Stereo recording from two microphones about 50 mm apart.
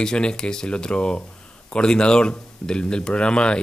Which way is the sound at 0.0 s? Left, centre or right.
Centre.